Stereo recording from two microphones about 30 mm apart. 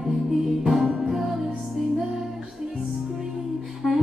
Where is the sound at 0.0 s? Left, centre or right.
Centre.